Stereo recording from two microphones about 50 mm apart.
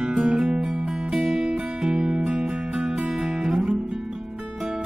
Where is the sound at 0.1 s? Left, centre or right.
Right.